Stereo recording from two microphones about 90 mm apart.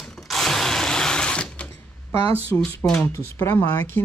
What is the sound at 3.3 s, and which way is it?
Speech, 35° left (ahead or behind).